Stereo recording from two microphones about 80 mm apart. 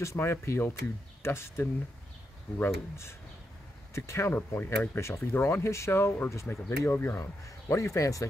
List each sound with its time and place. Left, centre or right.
0.0 s speech: left
4.3 s speech: left
7.4 s speech: left